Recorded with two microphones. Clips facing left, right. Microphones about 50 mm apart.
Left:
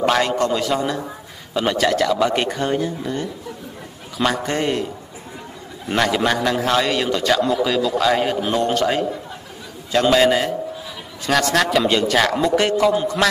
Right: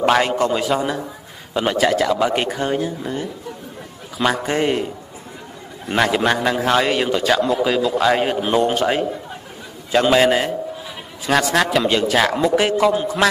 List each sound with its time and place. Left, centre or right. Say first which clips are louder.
0.0 s a man's voice: right 2 dB; centre
4.2 s a man's voice: right 2 dB; centre
5.9 s a man's voice: right 1 dB; centre